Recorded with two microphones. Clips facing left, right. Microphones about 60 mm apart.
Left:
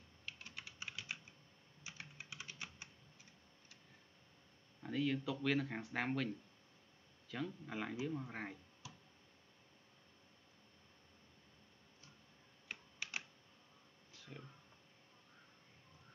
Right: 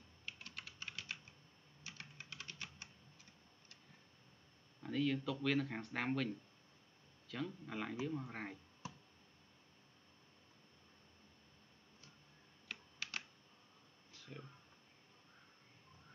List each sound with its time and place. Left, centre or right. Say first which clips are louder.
0.6 s typing: left 1 dB; centre
1.9 s typing: left 1 dB; centre
4.8 s speech: right 1 dB; centre
8.8 s tick: right 6 dB; right
12.6 s typing: even; centre
14.1 s a sound: right 1 dB; centre